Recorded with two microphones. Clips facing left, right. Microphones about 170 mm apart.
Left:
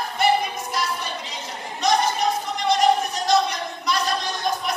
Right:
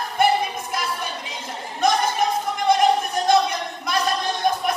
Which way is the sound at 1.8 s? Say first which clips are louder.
Right 1 dB; 55° right (ahead or behind).